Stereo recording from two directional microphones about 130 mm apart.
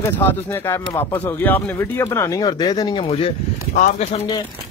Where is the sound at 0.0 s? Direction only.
20° left (ahead or behind); by 3.1 s 35° left (ahead or behind).